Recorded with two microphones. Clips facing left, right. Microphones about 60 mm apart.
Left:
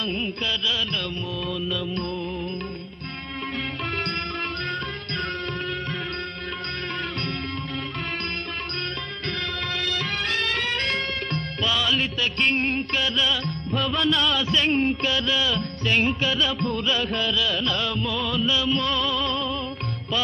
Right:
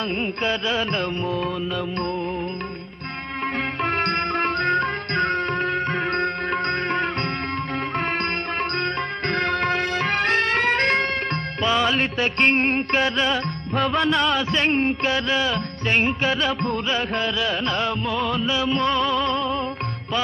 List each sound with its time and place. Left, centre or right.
0.4 s music: right
3.8 s music: right
8.7 s music: right